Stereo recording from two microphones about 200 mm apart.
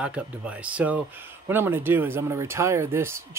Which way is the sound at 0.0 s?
5° right (ahead or behind).